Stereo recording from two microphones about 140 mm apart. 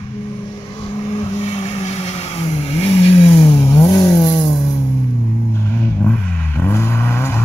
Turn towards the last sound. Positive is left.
turn(degrees=15)  # may be behind; listen again after turning